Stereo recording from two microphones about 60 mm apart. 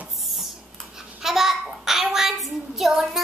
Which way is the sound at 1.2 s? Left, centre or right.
Centre.